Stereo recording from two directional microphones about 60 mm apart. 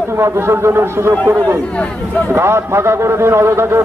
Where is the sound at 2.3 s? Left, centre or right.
Right.